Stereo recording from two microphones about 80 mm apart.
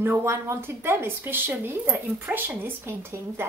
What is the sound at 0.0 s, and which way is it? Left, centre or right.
A woman's voice, right.